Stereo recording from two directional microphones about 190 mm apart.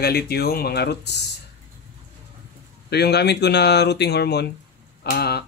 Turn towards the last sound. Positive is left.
turn(degrees=55)  # may be behind; listen again after turning